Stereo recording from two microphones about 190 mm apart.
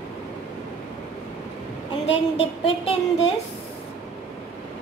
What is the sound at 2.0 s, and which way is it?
Speech, 30° left (ahead or behind).